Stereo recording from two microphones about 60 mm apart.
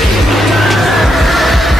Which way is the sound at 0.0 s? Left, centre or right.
Centre.